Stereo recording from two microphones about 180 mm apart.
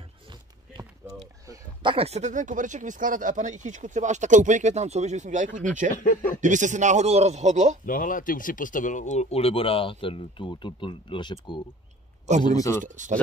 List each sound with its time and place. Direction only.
1.5 s a man's voice: 25° right (ahead or behind)
7.8 s a man's voice: 50° left (ahead or behind); by 12.8 s 20° left (ahead or behind)
12.8 s speech: 45° right (ahead or behind)